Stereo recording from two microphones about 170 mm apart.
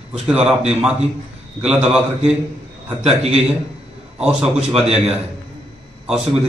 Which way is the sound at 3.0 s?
40° right (ahead or behind).